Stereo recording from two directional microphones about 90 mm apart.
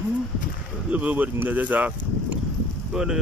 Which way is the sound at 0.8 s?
15° right (ahead or behind).